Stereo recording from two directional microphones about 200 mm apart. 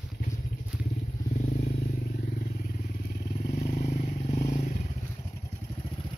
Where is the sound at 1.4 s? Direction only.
45° left (ahead or behind).